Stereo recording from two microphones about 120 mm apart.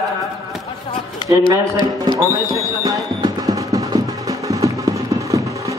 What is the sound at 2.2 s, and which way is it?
Speech, 30° left (ahead or behind).